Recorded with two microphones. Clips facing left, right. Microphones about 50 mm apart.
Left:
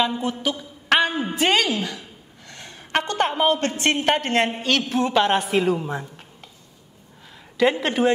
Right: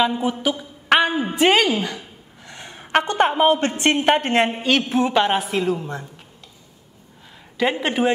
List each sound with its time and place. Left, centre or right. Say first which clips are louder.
0.0 s a woman's voice: right 3 dB; centre
5.1 s a woman's voice: even; centre
7.8 s speech: even; centre